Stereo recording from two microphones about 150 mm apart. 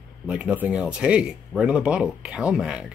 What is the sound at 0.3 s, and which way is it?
Speech, 5° right (ahead or behind).